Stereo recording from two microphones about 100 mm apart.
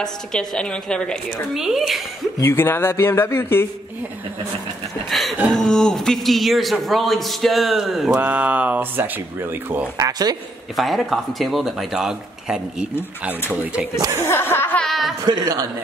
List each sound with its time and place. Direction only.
0.0 s a woman's voice: 5° left (ahead or behind)
1.5 s speech: 5° right (ahead or behind)
2.4 s speech: 25° left (ahead or behind)
5.5 s a man's voice: 5° left (ahead or behind)
8.2 s speech: 15° right (ahead or behind)
9.9 s a man's voice: 40° right (ahead or behind)
10.8 s speech: centre (ahead or behind)
14.2 s a sound: 25° left (ahead or behind)
14.8 s a sound: centre (ahead or behind)
15.2 s a man's voice: 40° right (ahead or behind)